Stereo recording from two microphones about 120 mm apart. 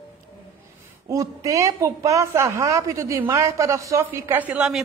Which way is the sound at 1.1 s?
25° right (ahead or behind).